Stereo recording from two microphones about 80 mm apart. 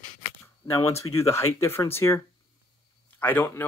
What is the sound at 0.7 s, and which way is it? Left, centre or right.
Speech, left.